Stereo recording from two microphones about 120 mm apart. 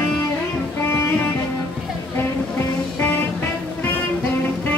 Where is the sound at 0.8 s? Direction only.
20° left (ahead or behind).